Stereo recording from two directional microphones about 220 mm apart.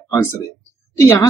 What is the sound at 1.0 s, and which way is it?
Speech, 15° left (ahead or behind).